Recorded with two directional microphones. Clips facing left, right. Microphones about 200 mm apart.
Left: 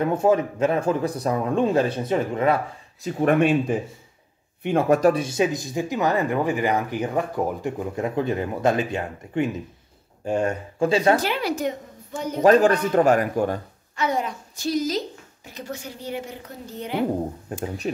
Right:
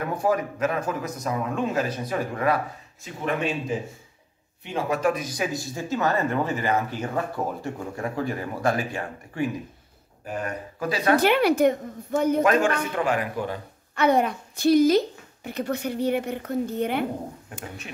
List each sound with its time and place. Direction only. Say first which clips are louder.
0.0 s speech: left 5 dB; 25° left (ahead or behind)
3.0 s a man's voice: left 8 dB; 45° left (ahead or behind)
5.1 s speech: left 6 dB; 25° left (ahead or behind)
11.1 s a woman's voice: right 6 dB; 60° right (ahead or behind)
12.4 s a man's voice: left 6 dB; 35° left (ahead or behind)
13.9 s a woman's voice: right 4 dB; 60° right (ahead or behind)
17.5 s speech: left 10 dB; 40° left (ahead or behind)